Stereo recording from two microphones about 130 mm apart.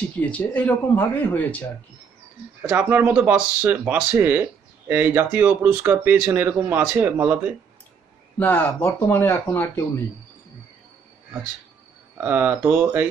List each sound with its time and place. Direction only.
0.2 s speech: 10° left (ahead or behind)
2.7 s speech: 15° right (ahead or behind)
8.4 s speech: 15° left (ahead or behind)
12.2 s speech: 15° right (ahead or behind)